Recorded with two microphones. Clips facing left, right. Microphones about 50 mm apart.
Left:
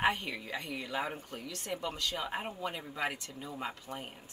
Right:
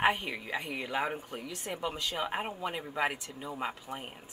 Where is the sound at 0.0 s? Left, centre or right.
Centre.